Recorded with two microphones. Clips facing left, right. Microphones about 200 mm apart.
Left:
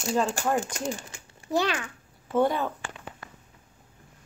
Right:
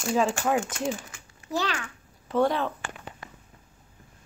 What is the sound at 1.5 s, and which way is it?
Speech, 15° left (ahead or behind).